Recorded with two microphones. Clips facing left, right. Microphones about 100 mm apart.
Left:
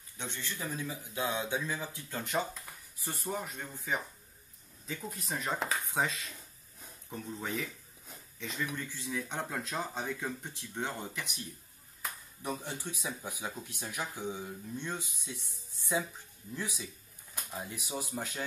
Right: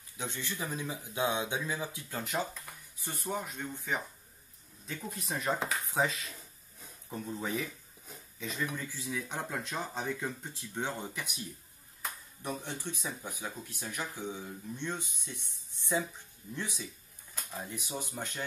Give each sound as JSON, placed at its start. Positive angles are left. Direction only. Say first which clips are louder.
{"t": 0.2, "sound": "speech", "louder": "right 2 dB", "side_deg": -10}
{"t": 2.1, "sound": "speech", "louder": "left 1 dB", "side_deg": 0}
{"t": 12.0, "sound": "speech", "louder": "even", "side_deg": 5}
{"t": 16.5, "sound": "speech", "louder": "even", "side_deg": 5}